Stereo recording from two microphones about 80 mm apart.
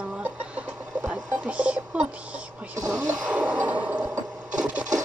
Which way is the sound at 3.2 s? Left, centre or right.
Centre.